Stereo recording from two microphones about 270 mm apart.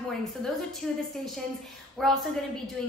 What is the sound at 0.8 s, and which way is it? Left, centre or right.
Speech, centre.